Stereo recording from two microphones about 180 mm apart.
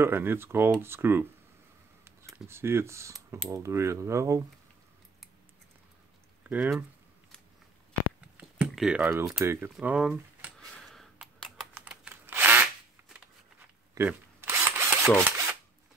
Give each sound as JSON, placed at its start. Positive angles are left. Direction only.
{"t": 0.0, "sound": "speech", "side_deg": -10}
{"t": 2.2, "sound": "speech", "side_deg": -10}
{"t": 6.5, "sound": "speech", "side_deg": -10}
{"t": 8.4, "sound": "speech", "side_deg": -5}
{"t": 9.4, "sound": "a sound", "side_deg": -10}
{"t": 11.7, "sound": "computer keyboard", "side_deg": -5}
{"t": 13.9, "sound": "drill", "side_deg": -15}
{"t": 15.2, "sound": "rub", "side_deg": -15}